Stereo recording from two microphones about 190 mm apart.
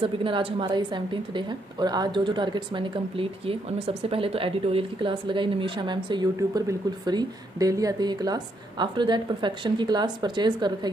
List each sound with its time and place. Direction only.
0.0 s a woman's voice: 30° right (ahead or behind)